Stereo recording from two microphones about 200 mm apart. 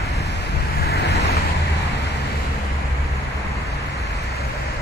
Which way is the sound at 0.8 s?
55° left (ahead or behind).